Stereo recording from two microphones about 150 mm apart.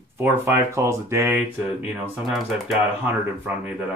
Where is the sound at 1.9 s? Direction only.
5° right (ahead or behind).